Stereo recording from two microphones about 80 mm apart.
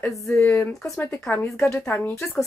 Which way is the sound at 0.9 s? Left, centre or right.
Left.